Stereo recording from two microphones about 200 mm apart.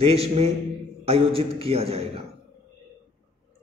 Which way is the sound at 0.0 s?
30° right (ahead or behind).